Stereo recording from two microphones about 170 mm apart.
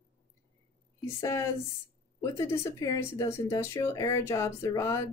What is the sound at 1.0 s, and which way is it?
Speech, 15° left (ahead or behind).